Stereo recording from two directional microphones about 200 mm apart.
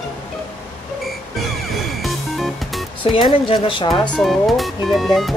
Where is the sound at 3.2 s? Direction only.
25° left (ahead or behind).